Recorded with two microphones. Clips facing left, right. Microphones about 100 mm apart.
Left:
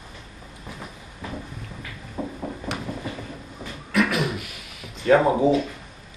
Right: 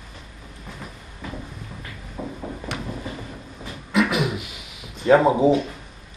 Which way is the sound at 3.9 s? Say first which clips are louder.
Right 1 dB; 20° right (ahead or behind).